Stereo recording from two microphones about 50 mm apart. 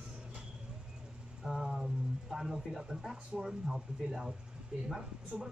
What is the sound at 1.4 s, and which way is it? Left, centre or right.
Speech, centre.